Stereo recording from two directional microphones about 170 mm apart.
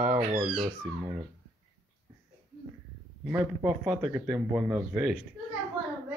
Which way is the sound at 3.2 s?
5° right (ahead or behind).